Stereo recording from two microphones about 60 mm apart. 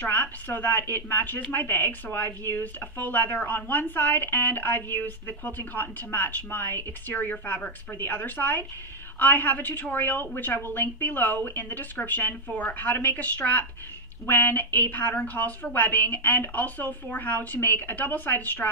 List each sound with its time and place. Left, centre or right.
0.0 s a woman's voice: left